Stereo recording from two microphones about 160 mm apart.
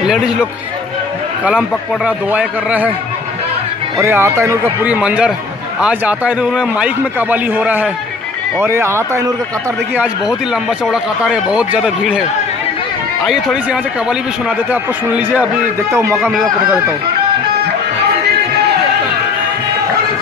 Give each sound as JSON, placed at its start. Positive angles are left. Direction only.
{"t": 0.0, "sound": "a man's voice", "side_deg": -5}
{"t": 4.0, "sound": "a man's voice", "side_deg": -15}
{"t": 9.9, "sound": "a man's voice", "side_deg": -5}